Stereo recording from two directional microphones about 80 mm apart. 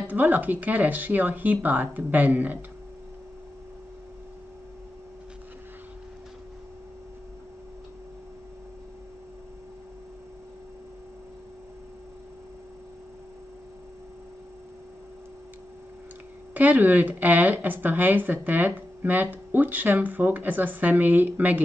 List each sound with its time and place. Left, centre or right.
0.0 s speech: right
16.5 s speech: right